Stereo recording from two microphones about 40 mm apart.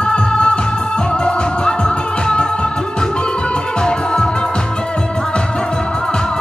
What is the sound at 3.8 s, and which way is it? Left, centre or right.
Music, left.